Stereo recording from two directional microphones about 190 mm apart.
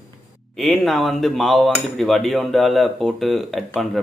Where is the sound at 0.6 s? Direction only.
Centre (ahead or behind).